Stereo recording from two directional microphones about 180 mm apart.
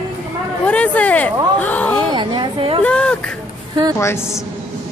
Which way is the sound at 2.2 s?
25° right (ahead or behind).